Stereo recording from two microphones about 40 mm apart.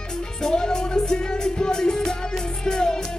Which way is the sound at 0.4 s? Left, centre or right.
Centre.